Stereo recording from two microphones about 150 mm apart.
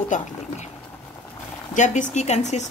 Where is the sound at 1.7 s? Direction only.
55° left (ahead or behind).